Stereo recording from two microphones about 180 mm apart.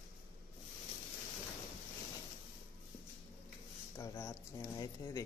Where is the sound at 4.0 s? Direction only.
15° left (ahead or behind).